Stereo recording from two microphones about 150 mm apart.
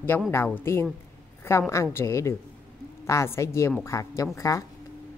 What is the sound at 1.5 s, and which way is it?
Speech, 15° left (ahead or behind).